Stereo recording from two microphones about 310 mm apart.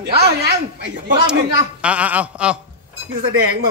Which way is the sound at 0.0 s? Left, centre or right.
Right.